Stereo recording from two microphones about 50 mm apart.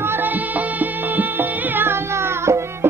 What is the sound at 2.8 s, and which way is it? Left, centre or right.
Music, right.